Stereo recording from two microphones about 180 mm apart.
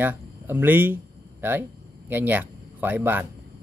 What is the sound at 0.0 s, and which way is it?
Speech, 10° right (ahead or behind).